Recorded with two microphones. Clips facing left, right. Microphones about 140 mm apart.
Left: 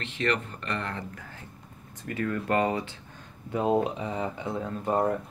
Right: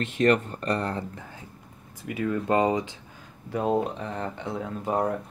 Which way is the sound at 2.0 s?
15° right (ahead or behind).